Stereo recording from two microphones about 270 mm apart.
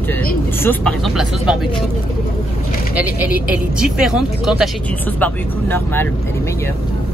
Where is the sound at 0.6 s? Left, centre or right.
Centre.